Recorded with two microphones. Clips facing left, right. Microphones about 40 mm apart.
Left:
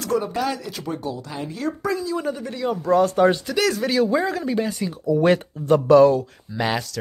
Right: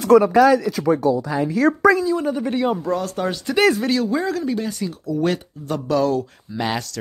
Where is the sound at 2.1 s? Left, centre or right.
Centre.